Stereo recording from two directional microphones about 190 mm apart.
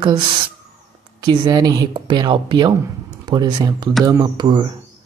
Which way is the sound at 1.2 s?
20° right (ahead or behind).